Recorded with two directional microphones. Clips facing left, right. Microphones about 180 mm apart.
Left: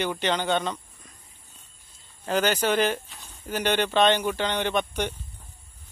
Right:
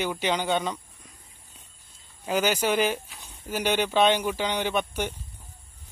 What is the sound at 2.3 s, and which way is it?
Speech, 10° right (ahead or behind).